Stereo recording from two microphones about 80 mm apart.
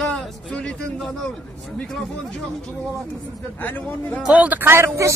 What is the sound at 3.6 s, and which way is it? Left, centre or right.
Speech, left.